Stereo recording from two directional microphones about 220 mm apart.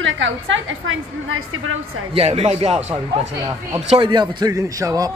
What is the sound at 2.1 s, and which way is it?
Speech, 30° right (ahead or behind).